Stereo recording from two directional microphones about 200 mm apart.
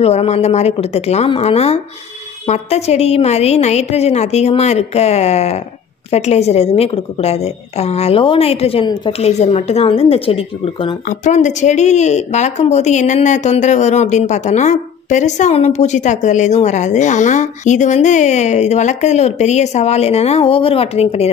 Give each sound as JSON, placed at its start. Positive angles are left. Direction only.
{"t": 0.0, "sound": "a woman's voice", "side_deg": 30}